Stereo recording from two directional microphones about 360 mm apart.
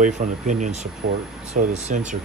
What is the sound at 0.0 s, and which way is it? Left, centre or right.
Speech, right.